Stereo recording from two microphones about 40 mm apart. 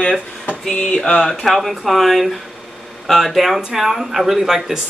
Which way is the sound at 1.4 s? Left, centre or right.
Centre.